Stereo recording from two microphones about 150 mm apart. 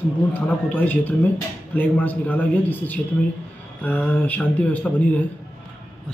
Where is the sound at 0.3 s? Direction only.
10° left (ahead or behind).